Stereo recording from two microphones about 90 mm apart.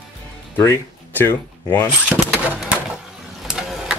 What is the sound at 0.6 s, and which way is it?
Speech, 25° left (ahead or behind).